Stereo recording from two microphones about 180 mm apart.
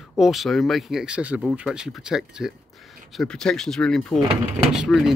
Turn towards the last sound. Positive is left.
turn(degrees=0)  # may be behind; listen again after turning